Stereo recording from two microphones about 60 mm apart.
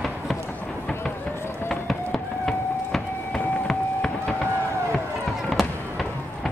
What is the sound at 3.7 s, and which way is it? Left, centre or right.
Run, centre.